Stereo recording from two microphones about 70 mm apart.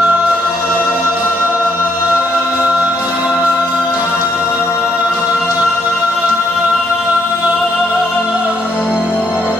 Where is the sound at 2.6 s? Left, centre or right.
Centre.